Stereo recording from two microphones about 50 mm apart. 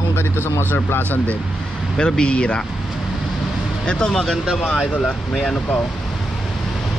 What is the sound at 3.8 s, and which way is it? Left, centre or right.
Speech, centre.